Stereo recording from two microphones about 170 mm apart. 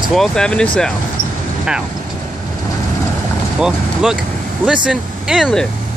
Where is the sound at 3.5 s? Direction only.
5° right (ahead or behind).